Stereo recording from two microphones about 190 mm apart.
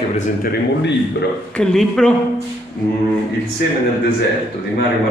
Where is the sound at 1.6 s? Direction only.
5° left (ahead or behind).